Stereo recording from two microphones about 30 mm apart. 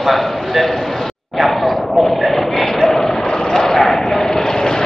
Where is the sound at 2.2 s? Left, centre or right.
Centre.